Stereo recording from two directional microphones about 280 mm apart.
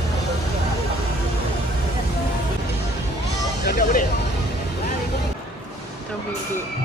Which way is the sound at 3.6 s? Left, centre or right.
Left.